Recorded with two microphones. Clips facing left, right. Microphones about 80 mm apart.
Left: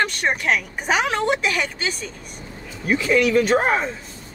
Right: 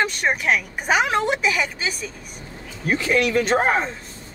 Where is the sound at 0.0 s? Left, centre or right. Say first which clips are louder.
Even; centre.